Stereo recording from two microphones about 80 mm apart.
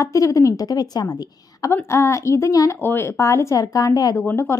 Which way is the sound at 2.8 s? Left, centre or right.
Left.